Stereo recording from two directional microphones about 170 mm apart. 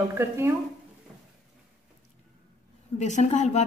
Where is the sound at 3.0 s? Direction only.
45° left (ahead or behind).